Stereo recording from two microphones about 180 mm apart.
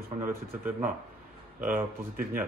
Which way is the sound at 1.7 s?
50° right (ahead or behind).